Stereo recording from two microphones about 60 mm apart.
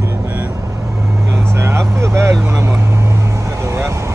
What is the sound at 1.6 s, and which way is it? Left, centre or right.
Speech, right.